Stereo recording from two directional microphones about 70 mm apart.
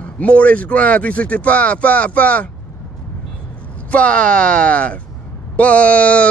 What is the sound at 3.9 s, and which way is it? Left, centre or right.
A man's voice, centre.